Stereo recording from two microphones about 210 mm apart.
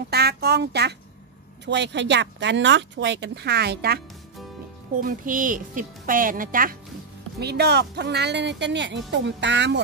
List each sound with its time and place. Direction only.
0.1 s speech: 50° right (ahead or behind)
5.0 s a woman's voice: 40° right (ahead or behind); by 9.8 s 55° right (ahead or behind)